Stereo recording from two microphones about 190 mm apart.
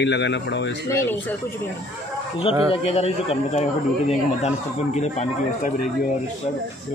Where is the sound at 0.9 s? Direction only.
15° left (ahead or behind).